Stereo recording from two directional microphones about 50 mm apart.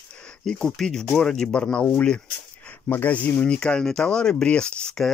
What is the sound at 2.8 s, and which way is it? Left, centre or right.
Speech, left.